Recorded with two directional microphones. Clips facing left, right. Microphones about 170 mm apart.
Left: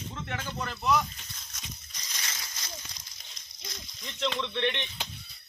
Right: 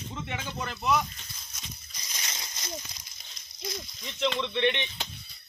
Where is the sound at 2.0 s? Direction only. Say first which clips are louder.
Right 1 dB; 20° right (ahead or behind).